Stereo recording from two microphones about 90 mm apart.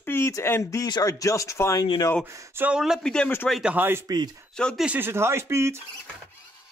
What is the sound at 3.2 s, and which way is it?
Speech, 20° left (ahead or behind).